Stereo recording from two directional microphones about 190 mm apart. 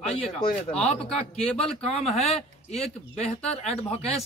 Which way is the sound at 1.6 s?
35° left (ahead or behind).